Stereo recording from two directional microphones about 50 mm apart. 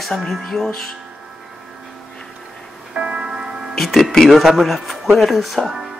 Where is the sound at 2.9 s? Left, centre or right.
Centre.